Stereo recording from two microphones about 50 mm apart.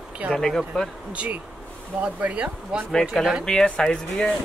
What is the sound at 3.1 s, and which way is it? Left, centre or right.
Speech, centre.